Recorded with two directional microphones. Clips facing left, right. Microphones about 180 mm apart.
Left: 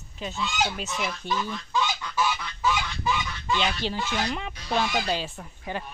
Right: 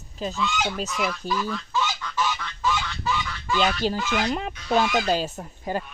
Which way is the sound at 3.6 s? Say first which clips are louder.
Right 4 dB; 45° right (ahead or behind).